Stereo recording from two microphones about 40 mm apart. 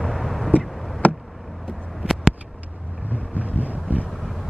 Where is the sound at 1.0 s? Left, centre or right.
Left.